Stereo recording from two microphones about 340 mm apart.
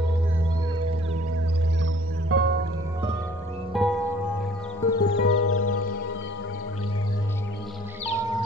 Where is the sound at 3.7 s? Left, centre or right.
Centre.